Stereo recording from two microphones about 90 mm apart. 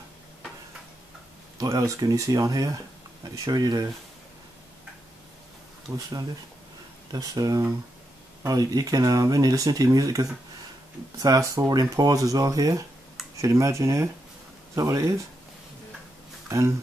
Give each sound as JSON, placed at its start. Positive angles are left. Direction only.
{"t": 1.7, "sound": "speech", "side_deg": -40}
{"t": 7.1, "sound": "speech", "side_deg": -40}
{"t": 16.4, "sound": "speech", "side_deg": -30}